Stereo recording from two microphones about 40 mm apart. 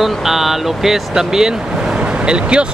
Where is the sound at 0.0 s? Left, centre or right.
Centre.